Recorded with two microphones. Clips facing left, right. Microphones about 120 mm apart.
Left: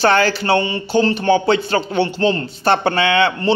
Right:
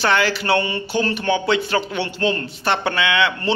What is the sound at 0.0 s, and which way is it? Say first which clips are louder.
Speech: left 4 dB; 35° left (ahead or behind).